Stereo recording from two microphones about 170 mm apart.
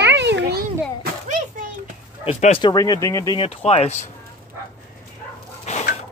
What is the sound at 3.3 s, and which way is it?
Speech, 35° left (ahead or behind).